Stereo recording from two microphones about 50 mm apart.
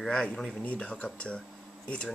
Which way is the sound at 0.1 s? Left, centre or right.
Centre.